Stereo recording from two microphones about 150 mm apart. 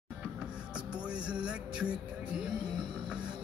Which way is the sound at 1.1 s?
5° right (ahead or behind).